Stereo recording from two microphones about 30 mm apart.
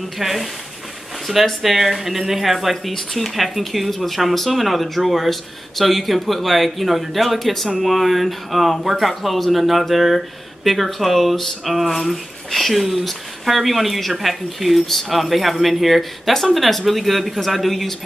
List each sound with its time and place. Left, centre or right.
0.2 s speech: centre